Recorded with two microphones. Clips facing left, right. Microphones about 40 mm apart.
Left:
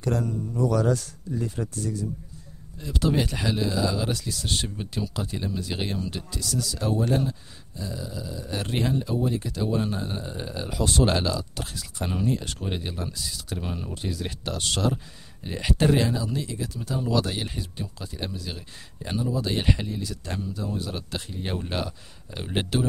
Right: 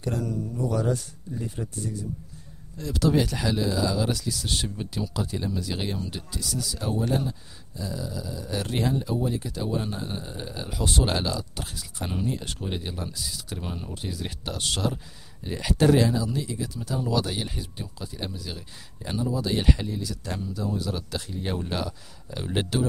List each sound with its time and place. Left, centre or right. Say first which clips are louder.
0.1 s speech: left 1 dB; left
0.6 s speech: left 4 dB; left
2.8 s speech: right 2 dB; centre
6.1 s speech: left 2 dB; centre
12.6 s speech: left 1 dB; centre
15.4 s speech: right 2 dB; centre